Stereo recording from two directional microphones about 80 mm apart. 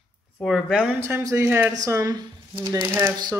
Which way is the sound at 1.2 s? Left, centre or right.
Right.